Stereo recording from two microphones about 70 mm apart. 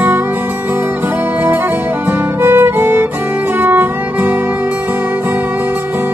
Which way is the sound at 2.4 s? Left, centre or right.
Right.